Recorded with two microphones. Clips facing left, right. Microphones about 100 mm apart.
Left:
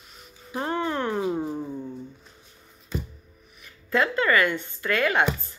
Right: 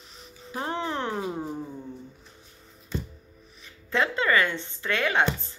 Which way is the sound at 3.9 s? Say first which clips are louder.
Left 2 dB; 25° right (ahead or behind).